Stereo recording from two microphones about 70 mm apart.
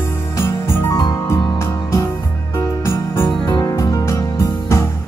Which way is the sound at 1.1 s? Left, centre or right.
Left.